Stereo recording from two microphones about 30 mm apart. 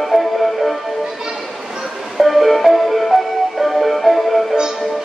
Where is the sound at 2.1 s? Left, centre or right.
Centre.